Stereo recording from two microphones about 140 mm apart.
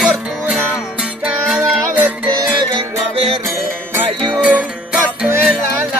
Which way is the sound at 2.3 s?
40° right (ahead or behind).